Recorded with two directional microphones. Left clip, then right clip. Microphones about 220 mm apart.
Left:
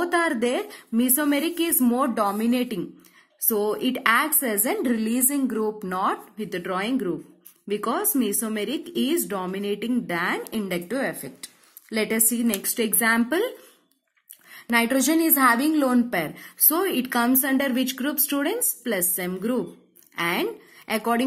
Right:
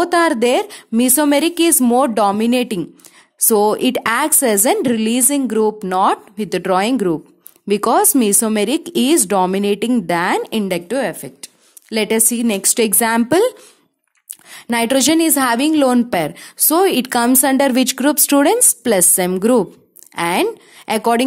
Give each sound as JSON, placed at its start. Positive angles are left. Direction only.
{"t": 0.0, "sound": "speech", "side_deg": -45}
{"t": 14.5, "sound": "speech", "side_deg": -45}